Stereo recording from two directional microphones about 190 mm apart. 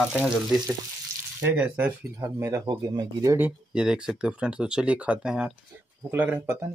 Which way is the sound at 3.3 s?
5° right (ahead or behind).